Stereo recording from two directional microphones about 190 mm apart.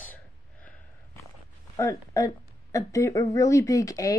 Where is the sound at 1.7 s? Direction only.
15° left (ahead or behind).